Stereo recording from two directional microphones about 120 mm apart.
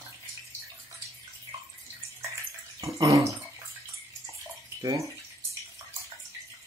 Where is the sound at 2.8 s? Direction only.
30° right (ahead or behind).